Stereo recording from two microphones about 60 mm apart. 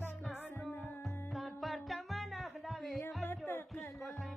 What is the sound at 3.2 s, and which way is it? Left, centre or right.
Music, left.